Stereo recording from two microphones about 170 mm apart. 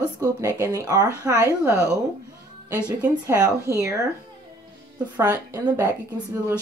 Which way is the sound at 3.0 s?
10° right (ahead or behind).